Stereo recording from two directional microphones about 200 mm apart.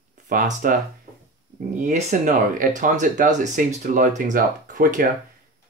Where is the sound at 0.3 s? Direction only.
40° right (ahead or behind).